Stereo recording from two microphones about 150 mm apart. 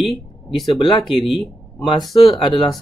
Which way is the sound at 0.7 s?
35° left (ahead or behind).